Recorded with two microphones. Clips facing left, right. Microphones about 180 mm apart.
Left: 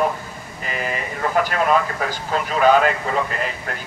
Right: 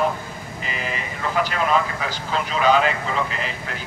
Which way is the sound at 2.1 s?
50° left (ahead or behind).